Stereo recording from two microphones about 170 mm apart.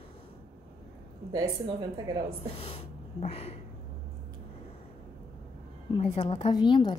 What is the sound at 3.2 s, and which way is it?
Speech, 35° left (ahead or behind).